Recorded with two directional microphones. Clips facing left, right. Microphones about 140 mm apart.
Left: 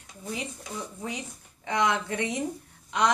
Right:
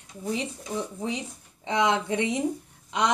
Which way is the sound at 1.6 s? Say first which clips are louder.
Right 2 dB; 25° right (ahead or behind).